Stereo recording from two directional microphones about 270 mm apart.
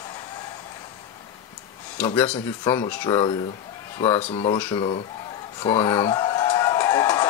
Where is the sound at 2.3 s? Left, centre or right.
Centre.